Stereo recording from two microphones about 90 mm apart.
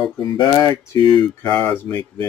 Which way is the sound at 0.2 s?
55° left (ahead or behind).